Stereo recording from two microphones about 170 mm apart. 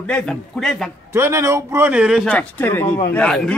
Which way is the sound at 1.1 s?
15° right (ahead or behind).